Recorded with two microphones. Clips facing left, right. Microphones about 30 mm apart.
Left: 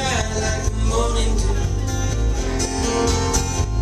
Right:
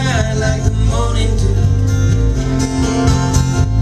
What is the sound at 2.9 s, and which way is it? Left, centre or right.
Music, centre.